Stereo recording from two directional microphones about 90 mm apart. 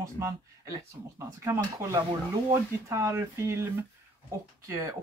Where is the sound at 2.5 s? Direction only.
30° right (ahead or behind).